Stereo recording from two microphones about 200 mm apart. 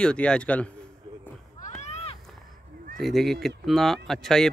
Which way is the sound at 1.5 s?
35° left (ahead or behind).